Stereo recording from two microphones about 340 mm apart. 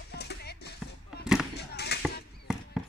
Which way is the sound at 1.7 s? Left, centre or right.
Left.